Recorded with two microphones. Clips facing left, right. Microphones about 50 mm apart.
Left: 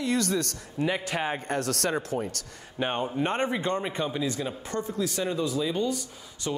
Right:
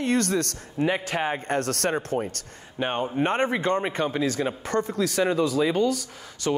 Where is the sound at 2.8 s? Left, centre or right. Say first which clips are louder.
Right 2 dB; centre.